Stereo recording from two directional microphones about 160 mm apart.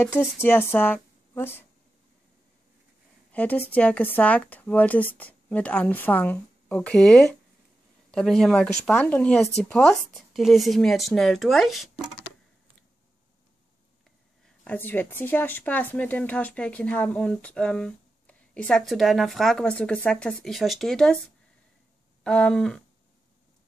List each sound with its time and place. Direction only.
0.0 s a woman's voice: 15° left (ahead or behind)
3.3 s a woman's voice: 10° left (ahead or behind)
14.4 s speech: 10° left (ahead or behind)
22.2 s speech: 5° left (ahead or behind)